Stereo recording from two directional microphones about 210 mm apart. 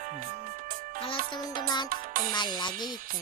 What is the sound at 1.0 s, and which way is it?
Music, 25° left (ahead or behind).